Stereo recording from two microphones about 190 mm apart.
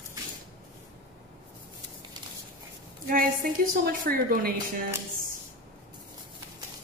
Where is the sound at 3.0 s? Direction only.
45° right (ahead or behind).